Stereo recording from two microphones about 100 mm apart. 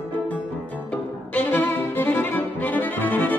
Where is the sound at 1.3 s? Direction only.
20° left (ahead or behind).